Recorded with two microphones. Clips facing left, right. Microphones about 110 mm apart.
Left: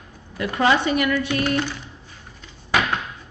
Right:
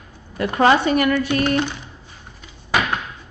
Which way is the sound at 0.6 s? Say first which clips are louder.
Right 4 dB; 45° right (ahead or behind).